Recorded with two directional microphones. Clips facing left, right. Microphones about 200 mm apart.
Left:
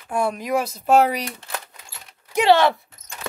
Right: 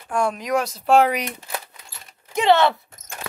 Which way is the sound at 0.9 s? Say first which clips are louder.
Even; centre (ahead or behind).